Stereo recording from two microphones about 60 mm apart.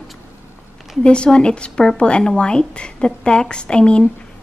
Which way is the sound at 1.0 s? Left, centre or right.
Centre.